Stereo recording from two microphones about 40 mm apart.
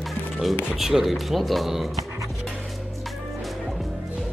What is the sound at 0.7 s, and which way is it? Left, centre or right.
Speech, centre.